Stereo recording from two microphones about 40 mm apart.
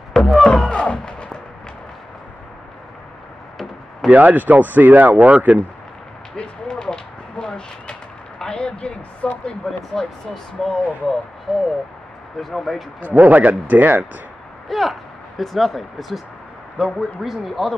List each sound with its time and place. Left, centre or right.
0.2 s speech: centre
0.5 s speech: left
4.1 s speech: right
6.7 s a sound: centre
9.2 s speech: left
9.7 s speech: centre
13.0 s speech: right
14.7 s speech: centre